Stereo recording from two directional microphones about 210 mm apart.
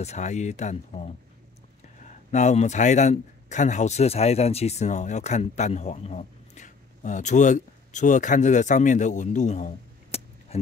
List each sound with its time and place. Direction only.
0.0 s speech: 35° left (ahead or behind)
10.1 s a sound: 30° left (ahead or behind)
10.5 s music: 30° left (ahead or behind)